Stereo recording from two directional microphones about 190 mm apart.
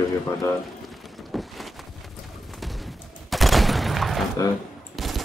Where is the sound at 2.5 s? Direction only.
Centre (ahead or behind).